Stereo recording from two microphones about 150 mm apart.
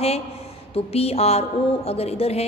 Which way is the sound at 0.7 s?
40° left (ahead or behind).